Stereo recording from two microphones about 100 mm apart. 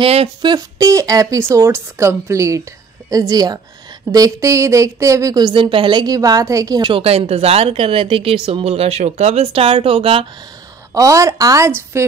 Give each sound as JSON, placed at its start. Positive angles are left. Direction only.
{"t": 0.0, "sound": "a sound", "side_deg": -80}
{"t": 0.6, "sound": "a woman's voice", "side_deg": -35}
{"t": 6.0, "sound": "a woman's voice", "side_deg": -40}
{"t": 6.8, "sound": "a woman's voice", "side_deg": -65}
{"t": 11.0, "sound": "a woman's voice", "side_deg": -35}